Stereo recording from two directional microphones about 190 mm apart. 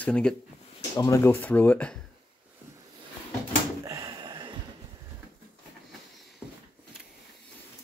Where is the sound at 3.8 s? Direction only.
20° right (ahead or behind).